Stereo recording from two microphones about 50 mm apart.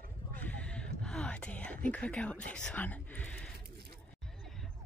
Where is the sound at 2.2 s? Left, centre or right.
Left.